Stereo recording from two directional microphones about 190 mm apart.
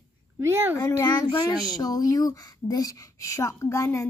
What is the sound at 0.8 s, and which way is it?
A child's voice, 15° left (ahead or behind).